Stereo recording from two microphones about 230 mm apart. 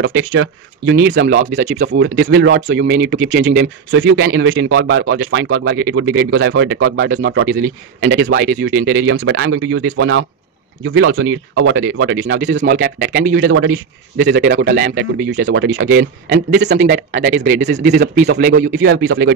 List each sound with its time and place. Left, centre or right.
0.0 s a man's voice: right
13.5 s speech: right
15.4 s a man's voice: right